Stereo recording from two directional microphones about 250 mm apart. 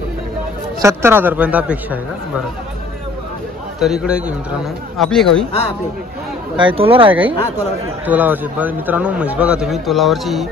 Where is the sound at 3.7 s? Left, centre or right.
Centre.